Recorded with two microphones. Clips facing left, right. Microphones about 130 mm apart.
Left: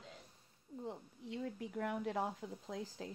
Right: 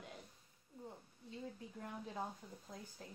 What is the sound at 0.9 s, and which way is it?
Speech, 85° left.